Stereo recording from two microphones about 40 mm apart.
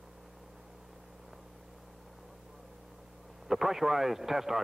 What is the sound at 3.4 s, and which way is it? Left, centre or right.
Speech, centre.